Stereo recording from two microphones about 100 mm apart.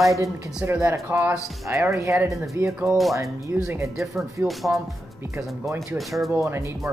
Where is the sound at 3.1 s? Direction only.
25° right (ahead or behind).